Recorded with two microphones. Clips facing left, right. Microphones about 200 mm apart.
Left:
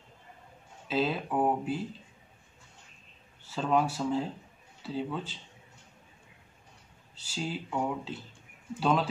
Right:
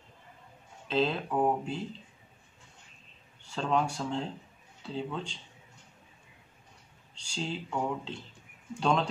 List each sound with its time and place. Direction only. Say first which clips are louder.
0.8 s speech: right 1 dB; 5° left (ahead or behind)
3.4 s speech: left 2 dB; 5° left (ahead or behind)
7.2 s speech: even; 5° left (ahead or behind)